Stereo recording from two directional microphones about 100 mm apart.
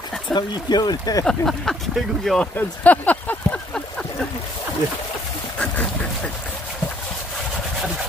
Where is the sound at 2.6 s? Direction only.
15° left (ahead or behind).